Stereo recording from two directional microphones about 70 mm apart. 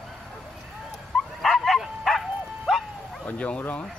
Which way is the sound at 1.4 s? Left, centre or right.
Centre.